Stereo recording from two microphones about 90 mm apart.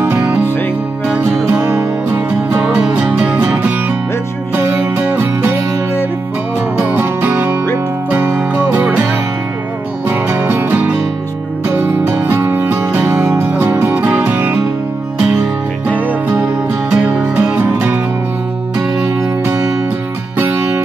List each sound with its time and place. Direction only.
0.0 s music: 25° right (ahead or behind)
1.5 s music: 15° right (ahead or behind)
6.8 s music: 25° right (ahead or behind)
10.0 s music: 25° right (ahead or behind)
16.1 s music: 15° right (ahead or behind)